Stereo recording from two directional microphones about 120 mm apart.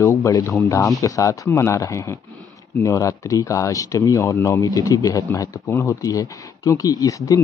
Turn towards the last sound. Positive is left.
turn(degrees=30)  # may be behind; listen again after turning